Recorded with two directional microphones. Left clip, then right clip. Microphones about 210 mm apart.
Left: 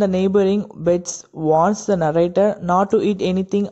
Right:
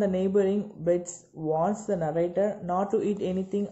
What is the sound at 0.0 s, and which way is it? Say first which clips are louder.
Speech: left 8 dB; 40° left (ahead or behind).